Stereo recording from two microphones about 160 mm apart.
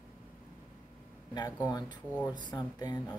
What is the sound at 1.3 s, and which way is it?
Speech, 25° left (ahead or behind).